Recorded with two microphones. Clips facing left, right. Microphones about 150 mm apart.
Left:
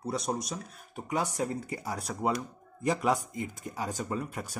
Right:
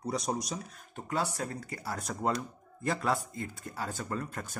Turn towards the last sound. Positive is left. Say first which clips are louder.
# left 2 dB
turn(degrees=10)  # may be behind; listen again after turning